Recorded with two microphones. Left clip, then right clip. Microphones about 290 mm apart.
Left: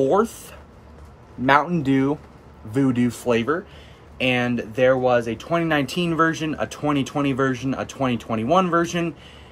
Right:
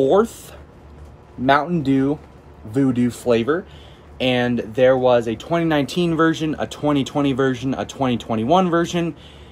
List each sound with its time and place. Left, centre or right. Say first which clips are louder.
0.0 s speech: right 3 dB; centre
2.8 s speech: right 2 dB; centre